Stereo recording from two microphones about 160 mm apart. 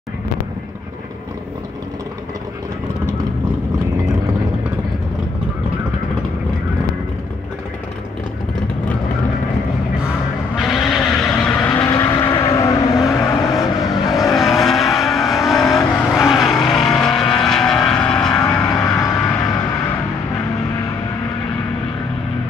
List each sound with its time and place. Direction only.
10.5 s vehicle: centre (ahead or behind)
11.8 s vehicle: 20° left (ahead or behind)
13.6 s vehicle: centre (ahead or behind)
18.9 s vehicle: 15° left (ahead or behind)